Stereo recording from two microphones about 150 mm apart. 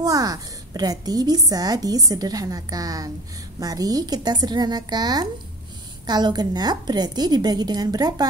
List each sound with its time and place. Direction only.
0.0 s a woman's voice: 25° right (ahead or behind)